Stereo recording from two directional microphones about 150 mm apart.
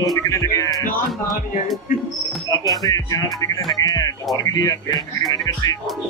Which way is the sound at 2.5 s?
25° left (ahead or behind).